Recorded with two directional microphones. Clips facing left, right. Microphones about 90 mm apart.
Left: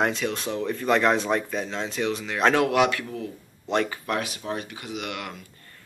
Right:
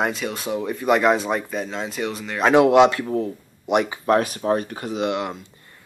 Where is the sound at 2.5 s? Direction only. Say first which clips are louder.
Right 7 dB; 25° right (ahead or behind).